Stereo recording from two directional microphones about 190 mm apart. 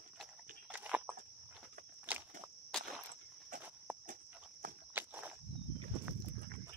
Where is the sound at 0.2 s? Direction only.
5° right (ahead or behind).